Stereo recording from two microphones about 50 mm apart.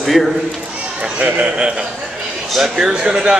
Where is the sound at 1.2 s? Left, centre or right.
Right.